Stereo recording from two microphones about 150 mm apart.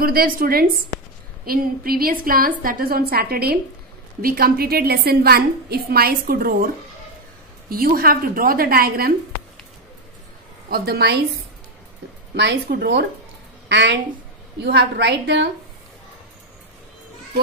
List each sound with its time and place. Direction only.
0.0 s a woman's voice: 75° right (ahead or behind)
7.7 s a woman's voice: 75° right (ahead or behind)
10.7 s a woman's voice: 90° right
12.4 s a woman's voice: 90° right
14.7 s a woman's voice: 90° right